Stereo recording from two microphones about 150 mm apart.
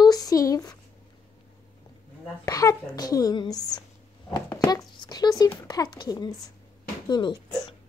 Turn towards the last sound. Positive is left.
turn(degrees=30)  # may be behind; listen again after turning